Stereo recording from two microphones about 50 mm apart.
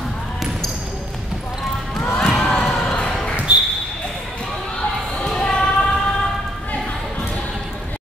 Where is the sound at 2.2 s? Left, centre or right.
Centre.